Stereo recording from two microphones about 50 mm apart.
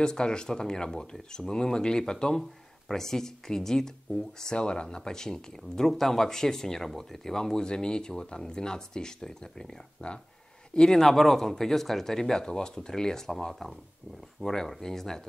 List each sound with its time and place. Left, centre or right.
0.0 s a man's voice: centre
11.0 s speech: centre